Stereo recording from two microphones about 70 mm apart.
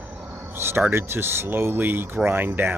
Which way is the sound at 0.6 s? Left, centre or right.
Right.